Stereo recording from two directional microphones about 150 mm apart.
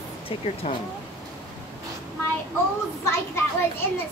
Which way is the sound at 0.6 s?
40° left (ahead or behind).